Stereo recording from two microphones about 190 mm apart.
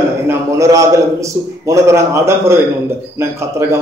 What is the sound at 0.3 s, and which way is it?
A man's voice, 15° right (ahead or behind).